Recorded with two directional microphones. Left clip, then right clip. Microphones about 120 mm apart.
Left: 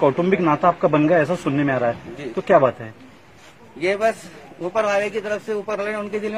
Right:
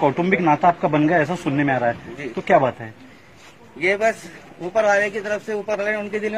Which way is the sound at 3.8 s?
10° left (ahead or behind).